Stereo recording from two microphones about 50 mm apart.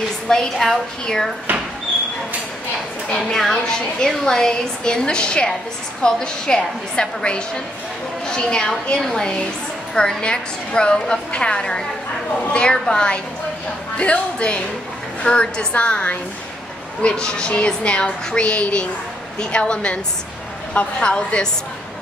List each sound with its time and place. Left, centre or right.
0.3 s a woman's voice: centre
3.2 s a woman's voice: centre